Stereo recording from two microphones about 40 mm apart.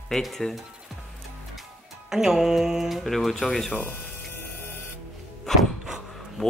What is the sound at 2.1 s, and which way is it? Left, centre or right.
Mantra, centre.